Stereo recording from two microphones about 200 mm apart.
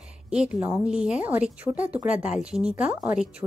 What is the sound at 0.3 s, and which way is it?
A woman's voice, 5° right (ahead or behind).